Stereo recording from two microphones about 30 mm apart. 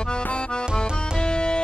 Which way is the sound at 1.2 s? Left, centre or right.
Left.